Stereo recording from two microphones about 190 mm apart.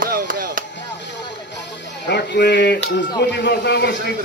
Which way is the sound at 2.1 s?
60° left (ahead or behind).